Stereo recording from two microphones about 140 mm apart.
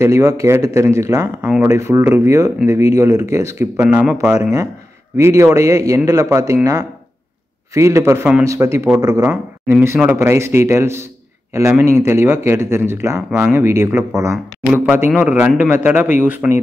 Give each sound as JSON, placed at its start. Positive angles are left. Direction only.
{"t": 0.0, "sound": "speech", "side_deg": -20}
{"t": 3.8, "sound": "speech", "side_deg": -10}
{"t": 5.1, "sound": "a man's voice", "side_deg": -20}